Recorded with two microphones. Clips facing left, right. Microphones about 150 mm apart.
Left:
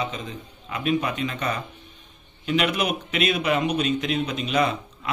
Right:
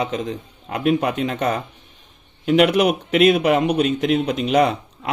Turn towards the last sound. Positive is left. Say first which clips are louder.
# right 5 dB
turn(degrees=-60)  # may be behind; listen again after turning